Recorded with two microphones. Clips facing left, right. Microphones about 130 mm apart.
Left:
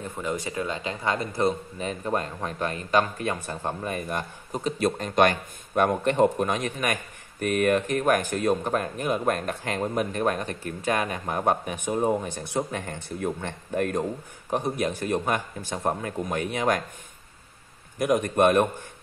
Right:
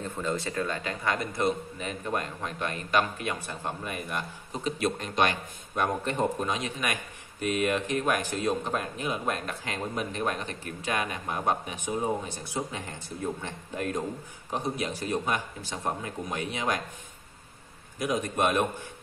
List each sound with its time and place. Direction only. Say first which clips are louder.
0.0 s a man's voice: left 1 dB; 10° left (ahead or behind); by 16.8 s 50° left (ahead or behind)
17.9 s speech: left 6 dB; 60° left (ahead or behind)